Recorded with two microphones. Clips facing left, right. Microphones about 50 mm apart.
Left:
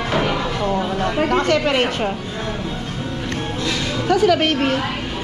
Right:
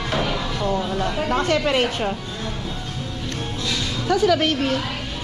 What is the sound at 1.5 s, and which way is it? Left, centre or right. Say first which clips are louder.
Speech: left 2 dB; left.